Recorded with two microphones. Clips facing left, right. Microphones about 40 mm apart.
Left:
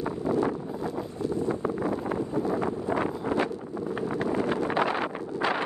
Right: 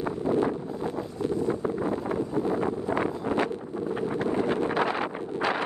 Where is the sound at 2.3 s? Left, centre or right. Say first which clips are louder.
Right 1 dB; right.